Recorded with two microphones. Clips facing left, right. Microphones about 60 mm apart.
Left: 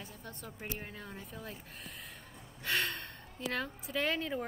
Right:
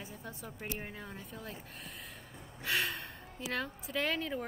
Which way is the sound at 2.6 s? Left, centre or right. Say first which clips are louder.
Even; centre.